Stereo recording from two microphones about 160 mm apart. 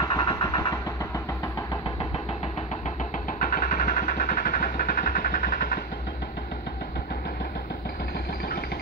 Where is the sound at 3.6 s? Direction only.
55° left (ahead or behind).